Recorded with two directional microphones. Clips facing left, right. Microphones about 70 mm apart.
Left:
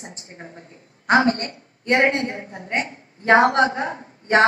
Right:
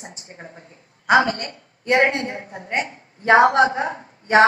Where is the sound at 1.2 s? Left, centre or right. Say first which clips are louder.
Left 4 dB; left.